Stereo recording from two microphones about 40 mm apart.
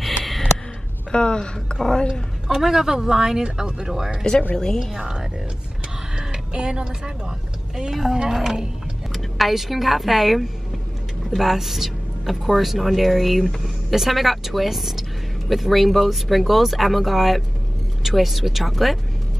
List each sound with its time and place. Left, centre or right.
0.0 s a sound: centre
1.1 s speech: left
2.4 s speech: centre
4.2 s speech: left
4.9 s speech: centre
6.1 s a sound: right
8.1 s speech: centre